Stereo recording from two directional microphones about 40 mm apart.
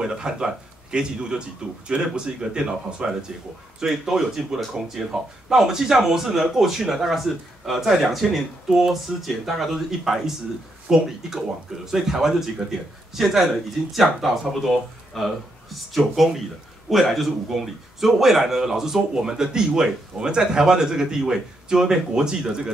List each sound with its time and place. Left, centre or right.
0.0 s speech: centre